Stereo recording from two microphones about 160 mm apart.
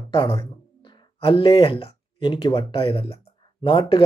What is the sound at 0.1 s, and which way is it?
Speech, 30° left (ahead or behind).